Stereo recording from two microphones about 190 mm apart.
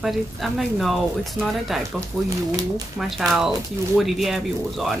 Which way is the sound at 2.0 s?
20° right (ahead or behind).